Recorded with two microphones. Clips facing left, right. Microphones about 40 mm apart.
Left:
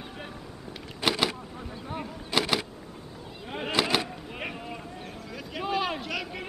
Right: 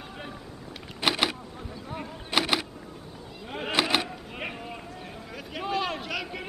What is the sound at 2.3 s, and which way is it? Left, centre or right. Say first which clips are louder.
Power windows: right 1 dB; centre.